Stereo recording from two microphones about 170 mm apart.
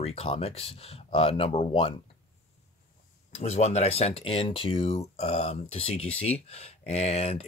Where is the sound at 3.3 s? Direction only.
40° left (ahead or behind).